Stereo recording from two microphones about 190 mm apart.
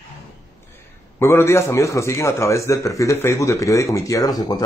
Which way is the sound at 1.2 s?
15° left (ahead or behind).